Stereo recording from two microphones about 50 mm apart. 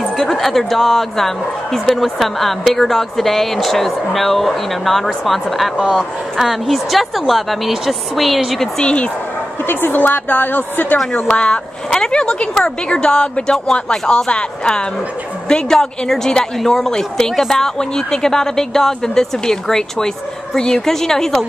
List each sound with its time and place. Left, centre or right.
0.3 s speech: centre
5.8 s speech: centre
6.3 s speech: centre
8.8 s speech: left
9.7 s a woman's voice: left
11.2 s a woman's voice: left